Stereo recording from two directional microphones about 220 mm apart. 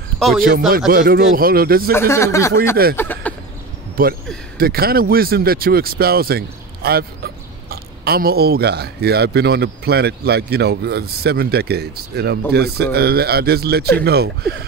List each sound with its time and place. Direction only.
0.2 s speech: centre (ahead or behind)
0.7 s speech: 40° right (ahead or behind)
1.9 s speech: 10° left (ahead or behind)
3.0 s a sound: 10° left (ahead or behind)
4.0 s speech: 40° right (ahead or behind)